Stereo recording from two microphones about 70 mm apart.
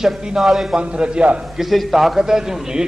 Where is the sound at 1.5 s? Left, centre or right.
Centre.